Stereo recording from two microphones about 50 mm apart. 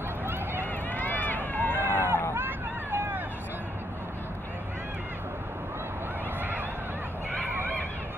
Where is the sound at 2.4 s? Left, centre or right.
Right.